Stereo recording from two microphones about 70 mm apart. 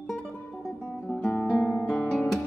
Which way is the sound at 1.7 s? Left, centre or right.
Left.